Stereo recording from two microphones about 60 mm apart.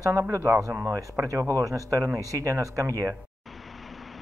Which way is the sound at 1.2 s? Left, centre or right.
Right.